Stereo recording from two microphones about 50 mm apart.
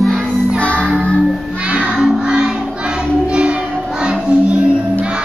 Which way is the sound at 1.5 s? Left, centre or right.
Right.